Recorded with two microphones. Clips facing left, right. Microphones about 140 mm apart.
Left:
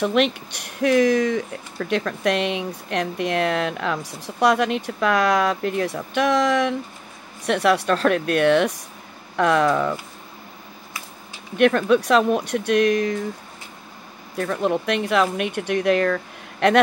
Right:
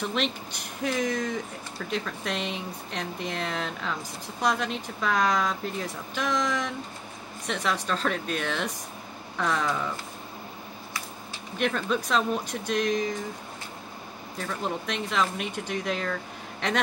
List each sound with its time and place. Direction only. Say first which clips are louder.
0.0 s speech: left 9 dB; 65° left (ahead or behind)
11.5 s speech: left 10 dB; 65° left (ahead or behind)
14.4 s speech: left 9 dB; 60° left (ahead or behind)